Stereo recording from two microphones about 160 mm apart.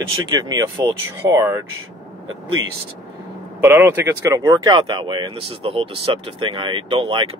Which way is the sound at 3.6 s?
15° right (ahead or behind).